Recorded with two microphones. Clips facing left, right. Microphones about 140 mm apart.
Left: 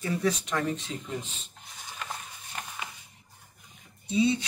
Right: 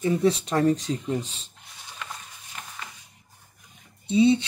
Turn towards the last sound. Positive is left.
turn(degrees=-30)  # may be behind; listen again after turning